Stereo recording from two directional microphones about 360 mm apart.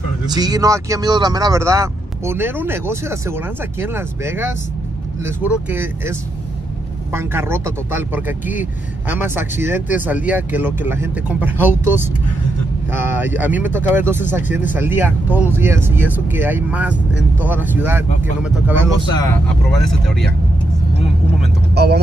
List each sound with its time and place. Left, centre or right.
0.3 s speech: centre
19.1 s speech: centre
21.7 s speech: right